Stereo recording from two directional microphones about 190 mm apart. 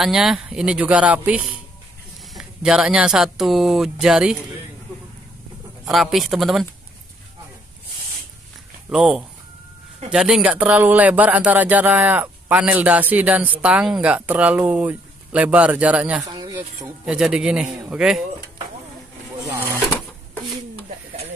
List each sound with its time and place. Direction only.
0.0 s speech: centre (ahead or behind)
5.9 s speech: centre (ahead or behind)
8.9 s speech: 5° right (ahead or behind)
16.3 s a sound: 20° right (ahead or behind)
16.5 s speech: 10° right (ahead or behind)